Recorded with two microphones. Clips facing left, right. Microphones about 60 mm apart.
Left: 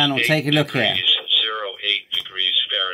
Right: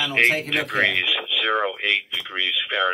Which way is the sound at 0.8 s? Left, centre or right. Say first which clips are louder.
Even; right.